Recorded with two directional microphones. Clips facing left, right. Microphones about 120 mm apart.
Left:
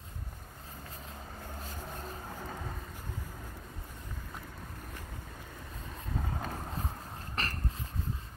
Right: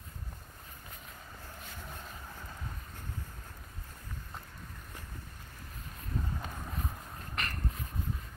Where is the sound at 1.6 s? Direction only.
35° left (ahead or behind).